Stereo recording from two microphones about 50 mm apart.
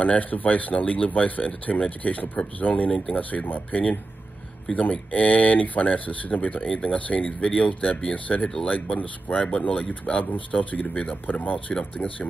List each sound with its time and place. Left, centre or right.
0.0 s speech: left
10.2 s speech: left